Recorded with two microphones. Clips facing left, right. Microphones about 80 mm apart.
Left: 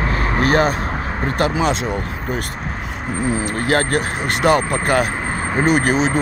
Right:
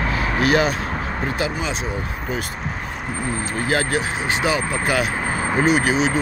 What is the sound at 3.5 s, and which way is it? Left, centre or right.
Speech, left.